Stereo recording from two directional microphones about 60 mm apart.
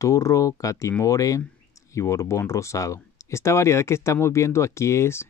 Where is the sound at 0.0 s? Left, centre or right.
Left.